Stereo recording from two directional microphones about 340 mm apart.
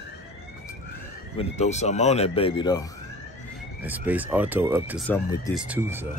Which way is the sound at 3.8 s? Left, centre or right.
Centre.